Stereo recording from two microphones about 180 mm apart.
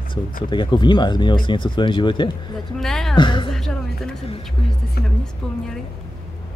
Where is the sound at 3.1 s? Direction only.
25° left (ahead or behind).